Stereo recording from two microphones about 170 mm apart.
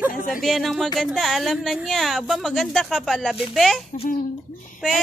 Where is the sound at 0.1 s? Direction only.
55° left (ahead or behind).